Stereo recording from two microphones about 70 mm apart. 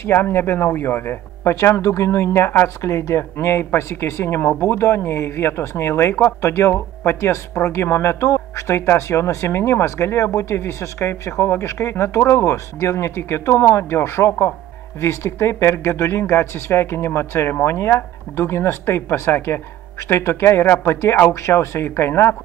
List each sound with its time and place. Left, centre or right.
0.0 s speech: left